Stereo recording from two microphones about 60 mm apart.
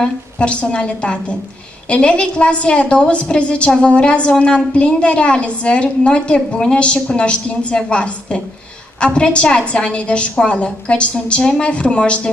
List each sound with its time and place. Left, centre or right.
0.0 s a woman's voice: centre